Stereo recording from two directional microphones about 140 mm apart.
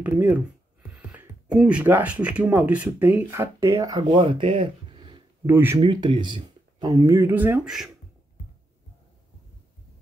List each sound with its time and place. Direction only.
0.0 s speech: 10° right (ahead or behind)
0.9 s a sound: 10° right (ahead or behind)
2.2 s speech: 10° right (ahead or behind)
4.2 s speech: 40° right (ahead or behind)
5.5 s speech: 15° right (ahead or behind)
5.8 s speech: 35° right (ahead or behind)
6.9 s speech: 20° right (ahead or behind)